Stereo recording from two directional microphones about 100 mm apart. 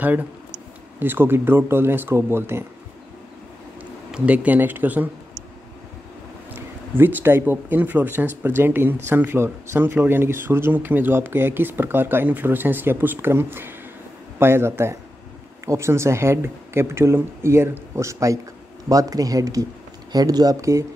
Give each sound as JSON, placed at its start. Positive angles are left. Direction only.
{"t": 0.0, "sound": "speech", "side_deg": -15}
{"t": 4.1, "sound": "speech", "side_deg": -15}
{"t": 6.5, "sound": "speech", "side_deg": -20}